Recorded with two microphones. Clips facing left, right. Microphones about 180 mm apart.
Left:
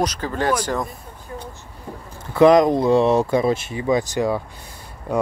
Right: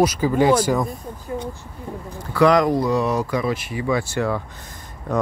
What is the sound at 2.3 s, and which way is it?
Speech, 20° left (ahead or behind).